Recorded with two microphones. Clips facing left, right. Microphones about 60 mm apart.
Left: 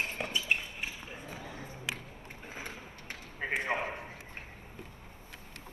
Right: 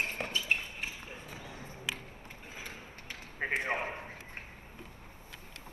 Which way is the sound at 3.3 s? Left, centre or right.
Right.